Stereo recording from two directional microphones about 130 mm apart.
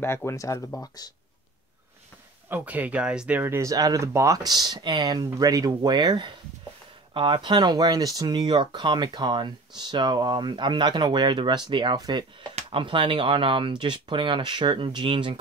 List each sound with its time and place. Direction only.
0.0 s speech: 20° left (ahead or behind)
2.5 s speech: 10° right (ahead or behind); by 15.3 s 40° right (ahead or behind)